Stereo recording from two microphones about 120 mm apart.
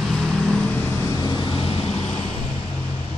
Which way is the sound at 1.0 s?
35° left (ahead or behind).